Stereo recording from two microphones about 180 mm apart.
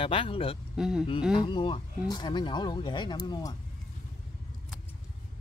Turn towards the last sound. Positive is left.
turn(degrees=20)  # may be behind; listen again after turning